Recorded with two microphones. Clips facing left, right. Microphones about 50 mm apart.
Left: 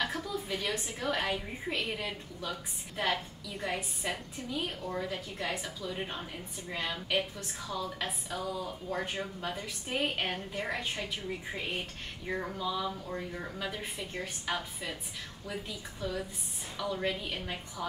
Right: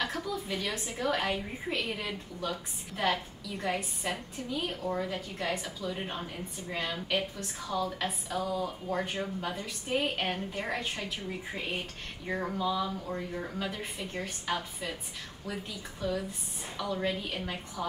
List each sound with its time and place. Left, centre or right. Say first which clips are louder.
0.0 s a woman's voice: right 1 dB; centre